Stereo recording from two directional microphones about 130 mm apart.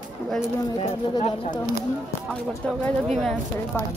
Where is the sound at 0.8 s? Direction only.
45° left (ahead or behind).